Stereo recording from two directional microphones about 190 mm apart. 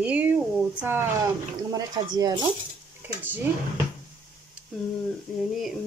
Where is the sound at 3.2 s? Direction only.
10° right (ahead or behind).